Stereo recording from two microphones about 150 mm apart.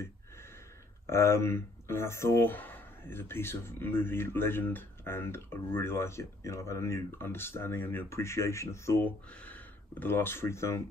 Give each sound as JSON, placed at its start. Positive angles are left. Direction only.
{"t": 1.0, "sound": "speech", "side_deg": 20}